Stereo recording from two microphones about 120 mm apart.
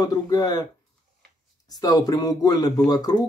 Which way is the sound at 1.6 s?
35° left (ahead or behind).